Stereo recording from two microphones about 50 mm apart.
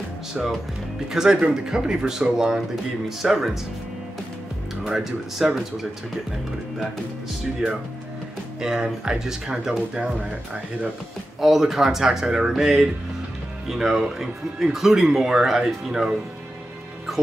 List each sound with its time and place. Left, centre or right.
0.3 s speech: centre
4.8 s speech: centre
8.5 s speech: centre
11.4 s speech: centre